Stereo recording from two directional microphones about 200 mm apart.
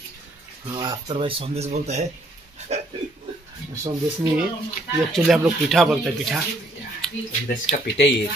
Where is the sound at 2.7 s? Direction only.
35° right (ahead or behind).